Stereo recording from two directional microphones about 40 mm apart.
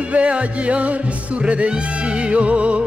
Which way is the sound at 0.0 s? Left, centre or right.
Right.